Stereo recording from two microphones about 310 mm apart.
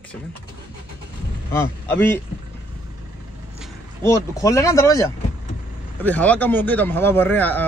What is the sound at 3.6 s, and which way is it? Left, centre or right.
Speech, centre.